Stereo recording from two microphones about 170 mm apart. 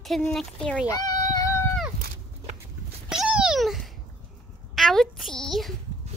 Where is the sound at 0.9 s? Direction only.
20° left (ahead or behind).